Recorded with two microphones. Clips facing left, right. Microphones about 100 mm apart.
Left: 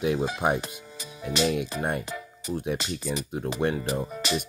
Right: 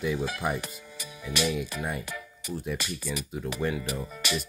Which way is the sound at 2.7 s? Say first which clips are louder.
Left 3 dB; 30° left (ahead or behind).